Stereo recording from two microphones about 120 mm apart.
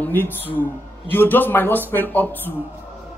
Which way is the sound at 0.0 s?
15° left (ahead or behind).